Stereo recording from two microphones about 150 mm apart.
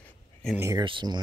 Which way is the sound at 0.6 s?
20° right (ahead or behind).